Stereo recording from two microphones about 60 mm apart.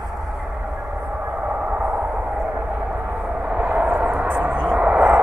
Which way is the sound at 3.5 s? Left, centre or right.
Right.